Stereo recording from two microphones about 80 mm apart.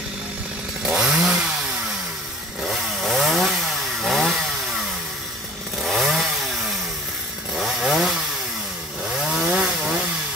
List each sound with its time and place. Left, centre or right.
0.8 s chainsaw: centre
2.7 s chainsaw: centre
5.8 s chainsaw: centre
9.4 s chainsaw: centre